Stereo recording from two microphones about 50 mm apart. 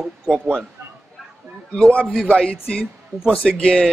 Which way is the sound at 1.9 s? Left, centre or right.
Left.